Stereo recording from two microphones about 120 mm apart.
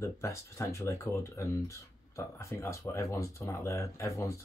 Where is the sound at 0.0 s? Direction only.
25° left (ahead or behind).